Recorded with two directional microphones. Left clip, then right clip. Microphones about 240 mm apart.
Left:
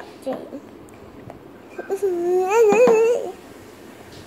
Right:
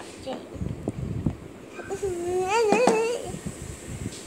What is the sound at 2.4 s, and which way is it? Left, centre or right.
Speech, left.